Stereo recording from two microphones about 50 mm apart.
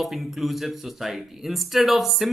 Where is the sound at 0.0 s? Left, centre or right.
Centre.